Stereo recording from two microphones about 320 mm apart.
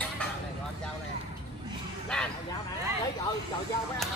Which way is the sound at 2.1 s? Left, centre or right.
Centre.